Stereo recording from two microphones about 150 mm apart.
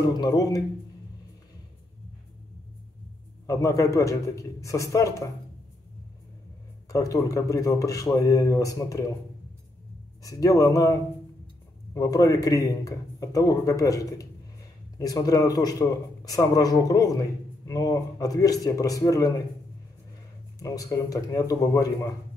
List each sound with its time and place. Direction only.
0.1 s speech: 25° left (ahead or behind)
3.4 s speech: 20° left (ahead or behind)
6.9 s speech: 20° left (ahead or behind)
10.2 s speech: 20° left (ahead or behind)
20.5 s speech: 25° left (ahead or behind)